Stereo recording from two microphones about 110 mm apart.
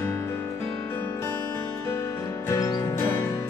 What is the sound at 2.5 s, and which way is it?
Music, 30° left (ahead or behind).